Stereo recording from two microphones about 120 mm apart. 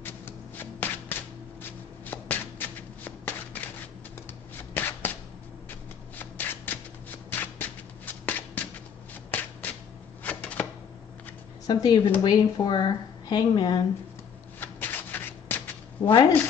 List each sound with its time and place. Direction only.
0.0 s shuffling cards: 15° left (ahead or behind)
1.6 s shuffle: 15° left (ahead or behind)
4.7 s shuffling cards: 15° left (ahead or behind)
7.2 s a sound: 15° left (ahead or behind)
9.3 s shuffle: 15° left (ahead or behind)
10.2 s chopping: 10° left (ahead or behind)
11.6 s speech: 35° left (ahead or behind)
14.6 s rub: 15° left (ahead or behind)
16.0 s speech: 45° left (ahead or behind)